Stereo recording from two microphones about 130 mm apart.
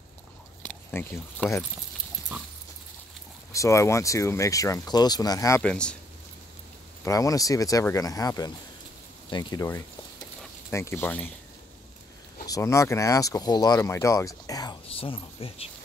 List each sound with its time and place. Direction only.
0.7 s a sound: 15° left (ahead or behind)
1.4 s speech: 10° left (ahead or behind)
3.5 s speech: 25° left (ahead or behind)
5.6 s speech: 5° left (ahead or behind)
7.1 s speech: 25° left (ahead or behind)
10.7 s speech: 20° left (ahead or behind)
12.4 s speech: 25° left (ahead or behind)
14.9 s speech: 45° left (ahead or behind)